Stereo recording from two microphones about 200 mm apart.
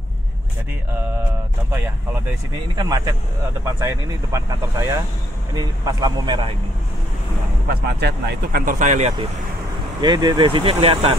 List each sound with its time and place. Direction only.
2.7 s speech: 20° right (ahead or behind)
8.0 s speech: 50° right (ahead or behind)
10.0 s speech: 20° right (ahead or behind)